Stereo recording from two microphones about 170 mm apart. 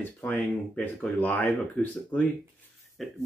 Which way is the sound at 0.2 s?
10° left (ahead or behind).